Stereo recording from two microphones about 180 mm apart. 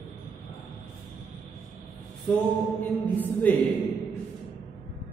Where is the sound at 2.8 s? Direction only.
10° left (ahead or behind).